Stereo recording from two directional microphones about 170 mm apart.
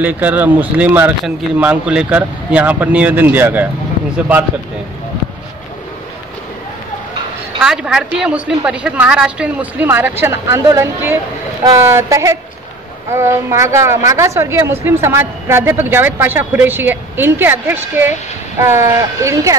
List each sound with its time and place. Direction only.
0.0 s a woman's voice: 10° right (ahead or behind)
7.6 s a woman's voice: 5° right (ahead or behind)